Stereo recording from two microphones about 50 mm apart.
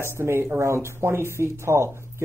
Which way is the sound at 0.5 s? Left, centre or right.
Right.